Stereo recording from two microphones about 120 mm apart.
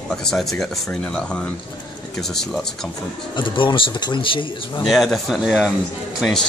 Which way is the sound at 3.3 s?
45° left (ahead or behind).